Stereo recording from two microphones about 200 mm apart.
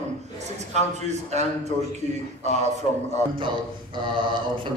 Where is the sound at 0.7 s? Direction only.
35° right (ahead or behind).